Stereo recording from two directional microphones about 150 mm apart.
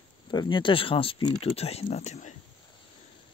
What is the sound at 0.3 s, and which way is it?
Speech, 30° left (ahead or behind).